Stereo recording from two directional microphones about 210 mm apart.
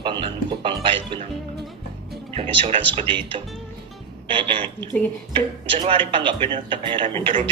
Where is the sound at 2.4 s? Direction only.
25° right (ahead or behind).